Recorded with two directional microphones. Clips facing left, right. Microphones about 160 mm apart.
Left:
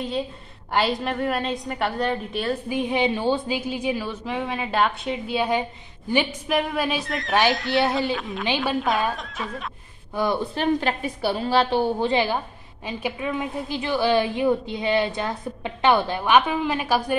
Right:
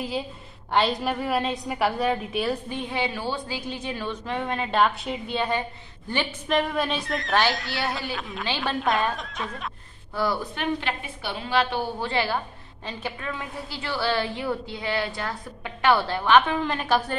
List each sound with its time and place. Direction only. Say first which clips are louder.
0.7 s a woman's voice: even; centre (ahead or behind)
2.7 s a woman's voice: left 6 dB; 15° left (ahead or behind); by 9.7 s centre (ahead or behind)
10.1 s a woman's voice: left 3 dB; 20° left (ahead or behind)
12.0 s a woman's voice: left 4 dB; 20° left (ahead or behind)